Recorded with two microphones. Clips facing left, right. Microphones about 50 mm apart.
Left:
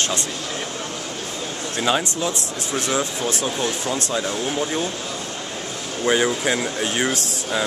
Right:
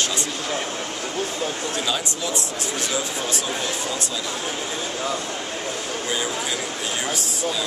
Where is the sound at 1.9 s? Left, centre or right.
Left.